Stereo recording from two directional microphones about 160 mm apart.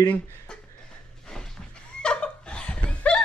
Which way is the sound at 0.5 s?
5° left (ahead or behind).